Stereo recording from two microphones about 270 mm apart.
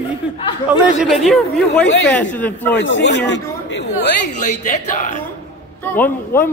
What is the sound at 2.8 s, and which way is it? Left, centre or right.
Speech, left.